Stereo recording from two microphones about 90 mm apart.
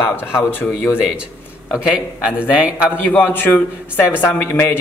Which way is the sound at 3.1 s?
20° left (ahead or behind).